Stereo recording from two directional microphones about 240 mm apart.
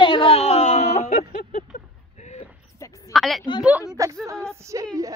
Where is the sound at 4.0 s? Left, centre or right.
Centre.